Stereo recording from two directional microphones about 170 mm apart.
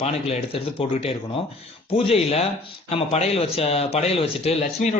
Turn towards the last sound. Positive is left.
turn(degrees=40)  # may be behind; listen again after turning